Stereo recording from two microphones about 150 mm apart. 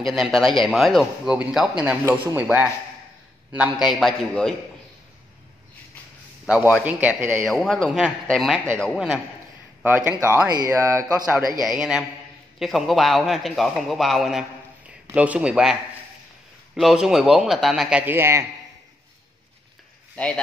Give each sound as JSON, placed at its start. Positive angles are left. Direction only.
{"t": 0.0, "sound": "speech", "side_deg": 0}
{"t": 6.4, "sound": "a man's voice", "side_deg": -5}
{"t": 7.4, "sound": "speech", "side_deg": 0}
{"t": 9.8, "sound": "speech", "side_deg": -15}
{"t": 11.6, "sound": "speech", "side_deg": -5}
{"t": 20.2, "sound": "speech", "side_deg": 10}